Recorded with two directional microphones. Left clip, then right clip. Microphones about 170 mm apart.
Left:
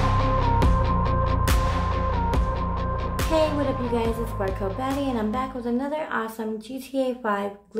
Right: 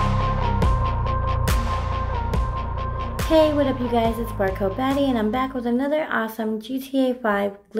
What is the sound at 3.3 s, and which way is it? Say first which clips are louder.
Music: right 5 dB; 25° right (ahead or behind).